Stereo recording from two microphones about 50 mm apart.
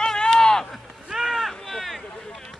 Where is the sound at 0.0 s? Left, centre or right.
Centre.